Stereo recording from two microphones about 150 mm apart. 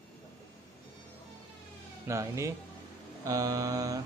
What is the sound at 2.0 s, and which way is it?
A man's voice, 20° right (ahead or behind).